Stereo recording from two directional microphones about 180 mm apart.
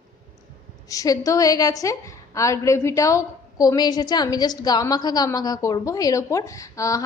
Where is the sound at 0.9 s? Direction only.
20° left (ahead or behind).